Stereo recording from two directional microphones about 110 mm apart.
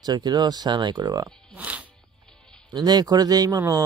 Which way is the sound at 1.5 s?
15° right (ahead or behind).